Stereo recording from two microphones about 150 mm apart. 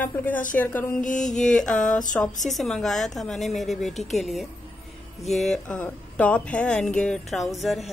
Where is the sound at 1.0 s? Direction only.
55° left (ahead or behind).